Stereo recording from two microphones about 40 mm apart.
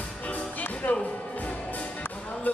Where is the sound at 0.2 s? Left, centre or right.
Left.